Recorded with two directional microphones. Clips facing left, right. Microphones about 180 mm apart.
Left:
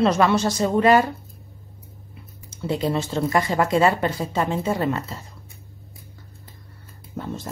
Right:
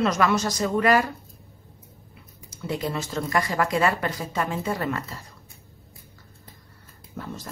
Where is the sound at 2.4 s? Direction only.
25° left (ahead or behind).